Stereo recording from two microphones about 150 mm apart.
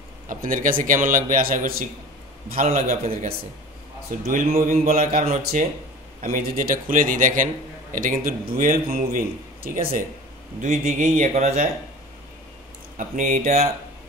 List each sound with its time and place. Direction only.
0.3 s a man's voice: 65° right (ahead or behind)
2.5 s a man's voice: 60° right (ahead or behind)
4.1 s a man's voice: 60° right (ahead or behind)
9.1 s speech: 80° right
10.6 s speech: 50° right (ahead or behind)
12.9 s a man's voice: 60° right (ahead or behind)